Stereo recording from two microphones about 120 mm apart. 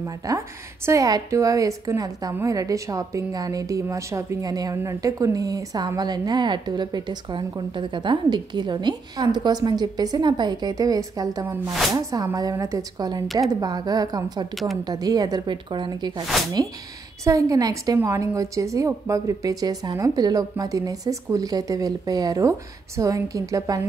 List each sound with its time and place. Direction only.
0.2 s a woman's voice: 30° right (ahead or behind)